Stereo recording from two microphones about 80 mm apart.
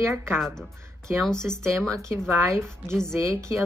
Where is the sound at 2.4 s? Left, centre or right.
Right.